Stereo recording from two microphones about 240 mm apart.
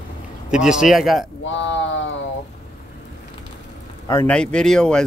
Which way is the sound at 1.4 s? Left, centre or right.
Left.